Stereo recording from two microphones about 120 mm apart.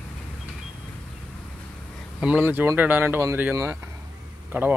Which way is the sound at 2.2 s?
15° right (ahead or behind).